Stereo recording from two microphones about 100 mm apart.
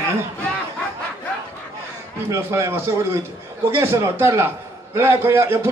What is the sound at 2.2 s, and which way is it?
A man's voice, 25° right (ahead or behind).